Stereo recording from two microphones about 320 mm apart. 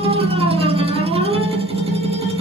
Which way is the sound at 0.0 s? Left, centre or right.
Centre.